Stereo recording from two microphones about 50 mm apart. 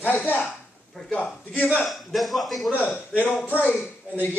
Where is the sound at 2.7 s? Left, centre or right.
Left.